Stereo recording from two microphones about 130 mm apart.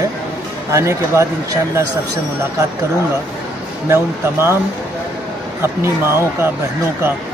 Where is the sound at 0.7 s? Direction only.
25° right (ahead or behind).